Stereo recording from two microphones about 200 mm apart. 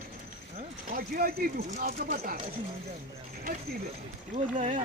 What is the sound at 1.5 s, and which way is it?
Speech, 40° right (ahead or behind).